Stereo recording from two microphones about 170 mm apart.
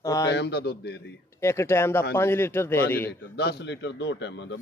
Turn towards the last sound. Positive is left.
turn(degrees=90)